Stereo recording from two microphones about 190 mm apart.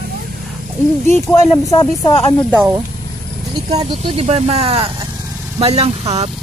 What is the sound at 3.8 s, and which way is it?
Speech, 35° right (ahead or behind).